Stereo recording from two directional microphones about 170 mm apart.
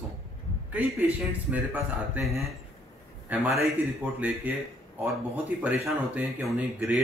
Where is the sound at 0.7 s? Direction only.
10° right (ahead or behind).